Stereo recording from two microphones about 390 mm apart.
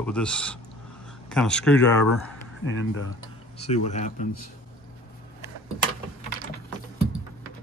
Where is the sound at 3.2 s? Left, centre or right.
Centre.